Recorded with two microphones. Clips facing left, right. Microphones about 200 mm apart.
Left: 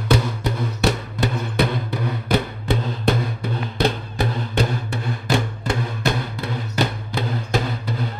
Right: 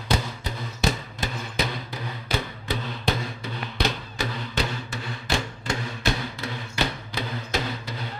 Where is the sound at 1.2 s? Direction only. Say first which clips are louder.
Left 8 dB; 60° left (ahead or behind).